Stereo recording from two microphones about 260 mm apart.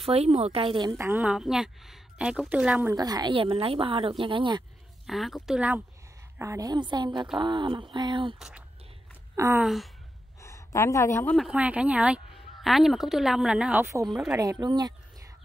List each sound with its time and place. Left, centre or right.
0.0 s a woman's voice: right
5.0 s a woman's voice: centre
8.4 s a woman's voice: centre
10.4 s a woman's voice: centre